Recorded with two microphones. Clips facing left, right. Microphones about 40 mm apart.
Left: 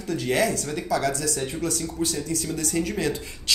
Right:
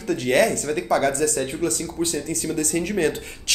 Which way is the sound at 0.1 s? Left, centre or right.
Right.